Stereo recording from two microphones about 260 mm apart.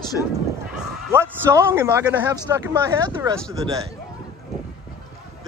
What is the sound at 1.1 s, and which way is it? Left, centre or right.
Speech, centre.